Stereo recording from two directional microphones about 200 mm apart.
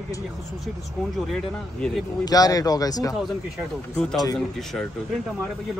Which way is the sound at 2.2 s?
20° left (ahead or behind).